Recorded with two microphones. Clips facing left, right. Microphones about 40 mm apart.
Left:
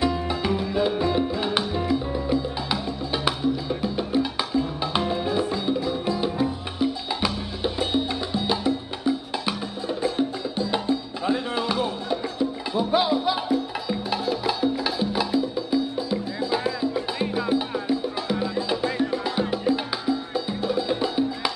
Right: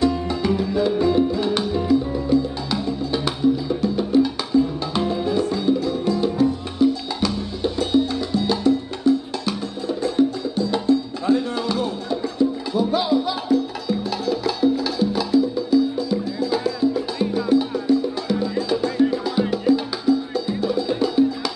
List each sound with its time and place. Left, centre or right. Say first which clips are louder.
0.0 s music: right 4 dB; centre